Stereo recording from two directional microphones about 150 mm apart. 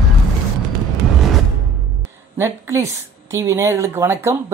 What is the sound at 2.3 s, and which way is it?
A woman's voice, 15° right (ahead or behind).